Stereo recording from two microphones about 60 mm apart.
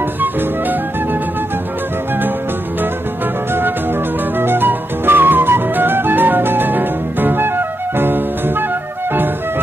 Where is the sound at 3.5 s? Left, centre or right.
Right.